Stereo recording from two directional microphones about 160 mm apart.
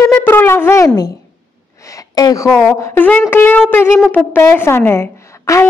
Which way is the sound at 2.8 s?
15° left (ahead or behind).